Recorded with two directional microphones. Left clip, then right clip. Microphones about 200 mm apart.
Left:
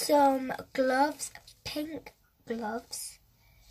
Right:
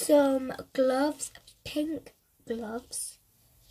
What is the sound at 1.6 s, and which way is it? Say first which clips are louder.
Cough: right 4 dB; 10° right (ahead or behind).